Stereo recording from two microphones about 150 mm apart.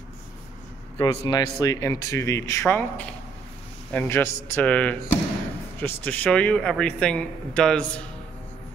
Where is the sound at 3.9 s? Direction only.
15° left (ahead or behind).